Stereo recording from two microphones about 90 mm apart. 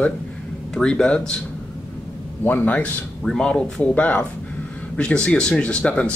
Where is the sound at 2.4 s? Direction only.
20° left (ahead or behind).